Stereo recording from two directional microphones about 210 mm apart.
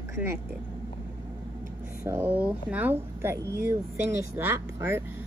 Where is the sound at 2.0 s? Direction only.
10° right (ahead or behind).